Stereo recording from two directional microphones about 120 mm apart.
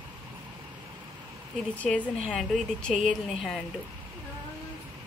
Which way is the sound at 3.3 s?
Centre (ahead or behind).